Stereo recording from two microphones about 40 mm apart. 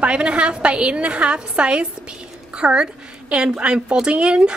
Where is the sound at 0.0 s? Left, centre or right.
Right.